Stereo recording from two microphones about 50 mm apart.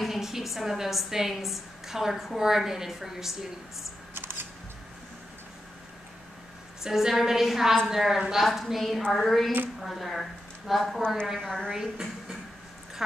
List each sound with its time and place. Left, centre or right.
0.0 s a woman's voice: centre
4.1 s camera: right
6.8 s a woman's voice: centre
11.3 s a woman's voice: centre
11.7 s a woman's voice: centre